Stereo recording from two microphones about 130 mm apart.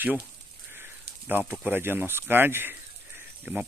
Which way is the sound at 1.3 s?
15° right (ahead or behind).